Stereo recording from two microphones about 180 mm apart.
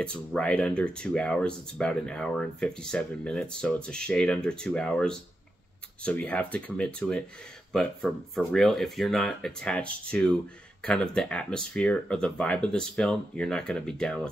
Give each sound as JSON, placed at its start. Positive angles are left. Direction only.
{"t": 0.0, "sound": "speech", "side_deg": 5}